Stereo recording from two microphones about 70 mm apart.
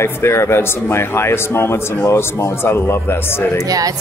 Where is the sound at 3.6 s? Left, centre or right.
Right.